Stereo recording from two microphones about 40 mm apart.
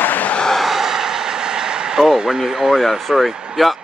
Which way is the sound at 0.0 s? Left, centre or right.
Left.